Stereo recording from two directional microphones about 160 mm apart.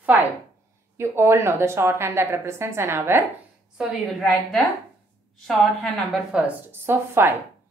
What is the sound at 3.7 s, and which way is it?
A woman's voice, centre (ahead or behind).